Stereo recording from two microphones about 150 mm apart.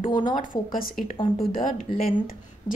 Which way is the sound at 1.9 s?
25° right (ahead or behind).